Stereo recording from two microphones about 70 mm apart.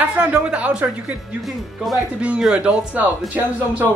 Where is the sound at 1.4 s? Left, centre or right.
Centre.